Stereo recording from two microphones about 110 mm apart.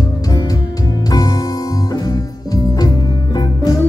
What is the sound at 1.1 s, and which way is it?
Music, 35° left (ahead or behind).